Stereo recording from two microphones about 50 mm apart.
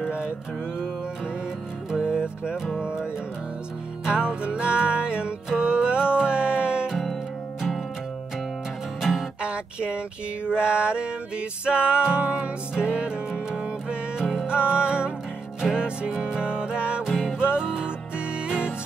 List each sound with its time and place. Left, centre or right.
0.0 s music: centre
1.9 s music: centre
6.9 s music: centre
9.0 s music: centre
9.4 s a sound: right
14.6 s music: right
17.0 s music: centre